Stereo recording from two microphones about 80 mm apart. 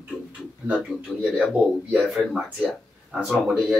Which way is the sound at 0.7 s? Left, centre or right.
Centre.